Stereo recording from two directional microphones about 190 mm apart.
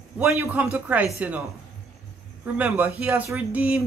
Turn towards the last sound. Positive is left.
turn(degrees=-10)  # may be behind; listen again after turning